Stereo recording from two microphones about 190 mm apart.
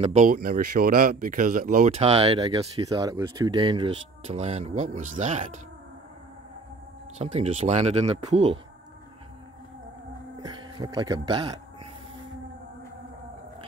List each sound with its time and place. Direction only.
0.0 s speech: 40° right (ahead or behind)
1.9 s speech: 30° right (ahead or behind)
2.9 s speech: 20° right (ahead or behind); by 5.6 s 40° right (ahead or behind)
7.2 s speech: 35° right (ahead or behind)
10.4 s a sound: 25° right (ahead or behind)